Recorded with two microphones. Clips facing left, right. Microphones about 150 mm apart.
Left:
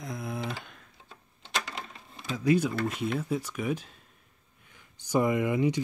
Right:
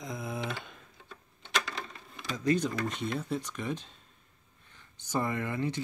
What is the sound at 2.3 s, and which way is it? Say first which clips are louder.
Speech: left 3 dB; 10° left (ahead or behind).